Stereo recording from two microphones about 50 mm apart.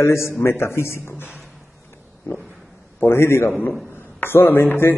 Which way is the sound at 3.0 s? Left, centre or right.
Left.